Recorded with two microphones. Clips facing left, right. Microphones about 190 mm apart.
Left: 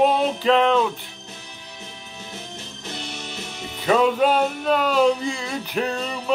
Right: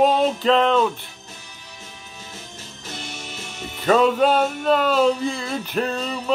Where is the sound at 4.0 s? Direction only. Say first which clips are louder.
Even; 10° left (ahead or behind).